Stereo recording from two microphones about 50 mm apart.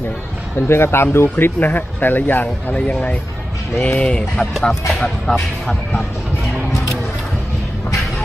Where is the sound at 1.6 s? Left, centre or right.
Left.